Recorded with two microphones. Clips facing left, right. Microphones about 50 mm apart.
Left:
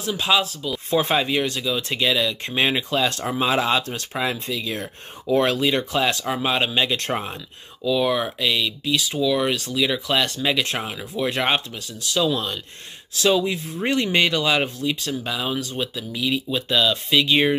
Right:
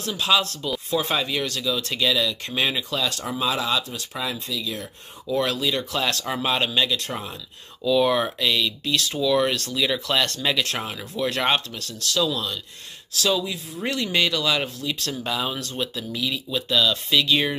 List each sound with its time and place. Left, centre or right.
0.0 s speech: centre
0.8 s speech: left
5.9 s speech: centre
7.0 s speech: left
7.8 s speech: centre; by 14.9 s left
14.9 s speech: centre; by 17.6 s left